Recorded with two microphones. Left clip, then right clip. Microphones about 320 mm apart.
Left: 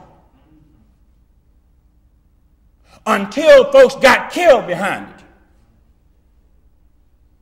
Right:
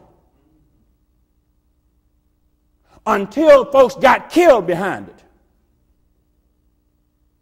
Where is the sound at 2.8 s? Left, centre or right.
Right.